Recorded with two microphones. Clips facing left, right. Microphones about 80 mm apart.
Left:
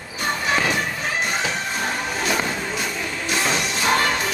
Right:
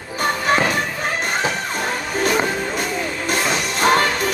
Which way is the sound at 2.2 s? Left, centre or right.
Right.